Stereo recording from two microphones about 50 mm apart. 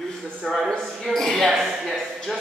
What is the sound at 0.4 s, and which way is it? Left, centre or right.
Speech, centre.